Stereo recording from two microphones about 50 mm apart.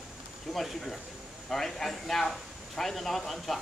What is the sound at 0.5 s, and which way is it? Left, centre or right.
A man's voice, centre.